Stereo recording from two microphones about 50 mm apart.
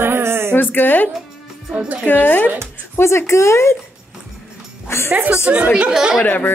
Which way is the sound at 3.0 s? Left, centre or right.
Left.